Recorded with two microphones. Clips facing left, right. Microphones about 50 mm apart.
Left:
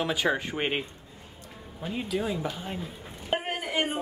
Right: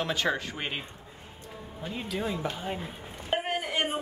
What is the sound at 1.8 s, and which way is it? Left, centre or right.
Speech, centre.